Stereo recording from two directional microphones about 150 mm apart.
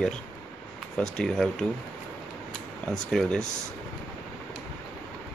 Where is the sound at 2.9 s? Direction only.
5° left (ahead or behind).